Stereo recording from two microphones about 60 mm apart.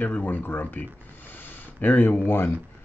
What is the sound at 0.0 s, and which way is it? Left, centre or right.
Speech, left.